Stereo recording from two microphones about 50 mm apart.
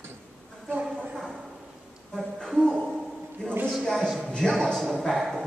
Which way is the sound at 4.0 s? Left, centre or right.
Centre.